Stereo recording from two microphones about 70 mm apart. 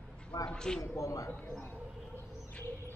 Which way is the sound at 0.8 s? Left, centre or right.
Left.